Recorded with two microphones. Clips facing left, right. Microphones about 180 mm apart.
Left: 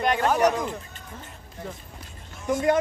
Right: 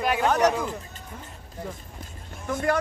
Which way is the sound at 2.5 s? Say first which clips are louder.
Left 3 dB; 20° left (ahead or behind).